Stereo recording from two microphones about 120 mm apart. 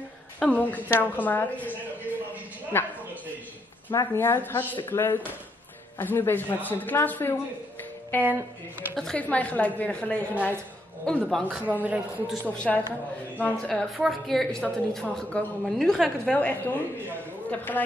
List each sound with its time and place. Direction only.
0.4 s speech: 10° left (ahead or behind)
2.7 s speech: 20° left (ahead or behind)
3.9 s speech: 25° left (ahead or behind)
8.2 s a man's voice: 15° right (ahead or behind)
8.9 s a woman's voice: 5° left (ahead or behind)
11.4 s a man's voice: 15° right (ahead or behind)
12.4 s a woman's voice: 10° left (ahead or behind)